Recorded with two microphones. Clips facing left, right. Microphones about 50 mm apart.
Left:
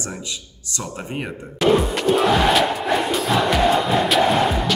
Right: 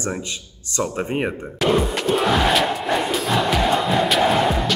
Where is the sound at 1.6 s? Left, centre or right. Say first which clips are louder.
Left 2 dB; centre.